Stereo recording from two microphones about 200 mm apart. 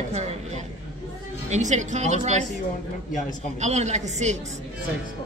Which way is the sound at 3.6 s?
35° right (ahead or behind).